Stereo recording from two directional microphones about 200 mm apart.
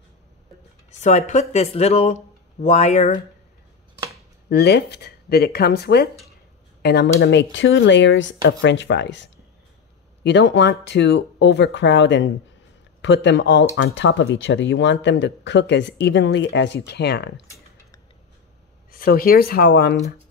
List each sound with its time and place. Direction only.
1.0 s speech: 35° left (ahead or behind)
4.5 s speech: 55° left (ahead or behind)
18.9 s speech: 45° left (ahead or behind)